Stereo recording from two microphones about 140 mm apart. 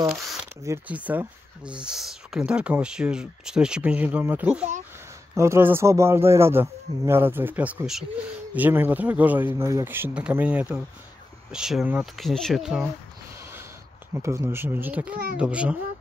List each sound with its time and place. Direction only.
0.7 s speech: 10° right (ahead or behind)
14.1 s speech: 20° right (ahead or behind)